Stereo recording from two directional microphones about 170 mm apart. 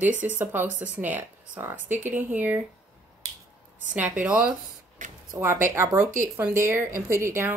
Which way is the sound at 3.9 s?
10° right (ahead or behind).